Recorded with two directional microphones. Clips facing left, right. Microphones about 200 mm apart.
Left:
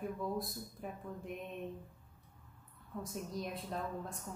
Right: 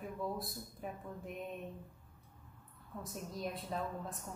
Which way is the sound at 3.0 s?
Centre (ahead or behind).